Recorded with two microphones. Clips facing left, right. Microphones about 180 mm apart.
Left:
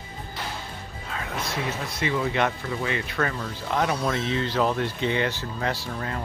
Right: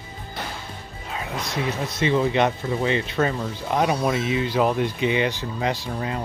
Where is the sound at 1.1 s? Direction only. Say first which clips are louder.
Right 2 dB; 20° right (ahead or behind).